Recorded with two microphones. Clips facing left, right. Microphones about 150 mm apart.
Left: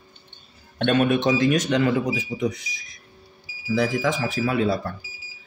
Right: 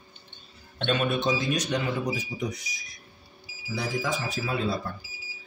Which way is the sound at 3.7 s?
90° left.